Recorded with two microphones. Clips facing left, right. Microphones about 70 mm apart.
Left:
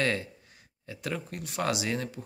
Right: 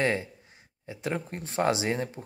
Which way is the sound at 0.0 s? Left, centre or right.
Right.